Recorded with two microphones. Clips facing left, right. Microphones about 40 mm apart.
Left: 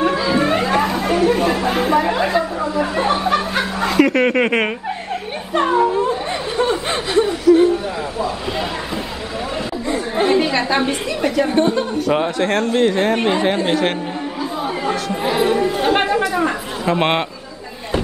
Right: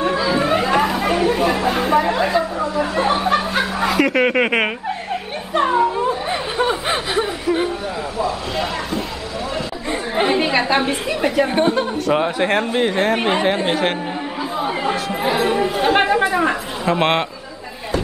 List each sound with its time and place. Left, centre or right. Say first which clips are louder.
0.0 s chatter: left 1 dB; centre
9.8 s a woman's voice: left 1 dB; centre
14.4 s chatter: right 1 dB; centre
16.2 s chatter: right 1 dB; centre
16.8 s a man's voice: even; centre